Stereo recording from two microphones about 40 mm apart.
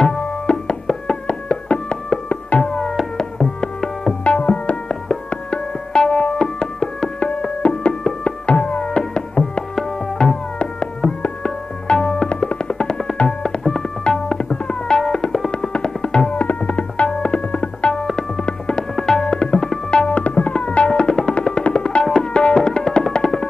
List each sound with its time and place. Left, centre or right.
0.0 s music: centre
9.8 s music: centre
10.6 s music: left
11.4 s tabla: left
12.3 s music: left
13.4 s tabla: centre
15.0 s music: centre
16.3 s tabla: left
18.4 s music: left
18.9 s tabla: centre
22.0 s tabla: centre